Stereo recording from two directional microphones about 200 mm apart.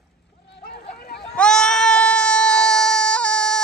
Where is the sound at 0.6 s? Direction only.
55° left (ahead or behind).